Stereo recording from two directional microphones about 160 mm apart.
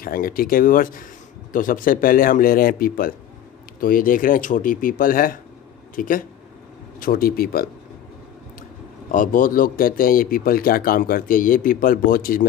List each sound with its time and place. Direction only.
0.0 s speech: 65° left (ahead or behind)
9.1 s speech: 60° left (ahead or behind)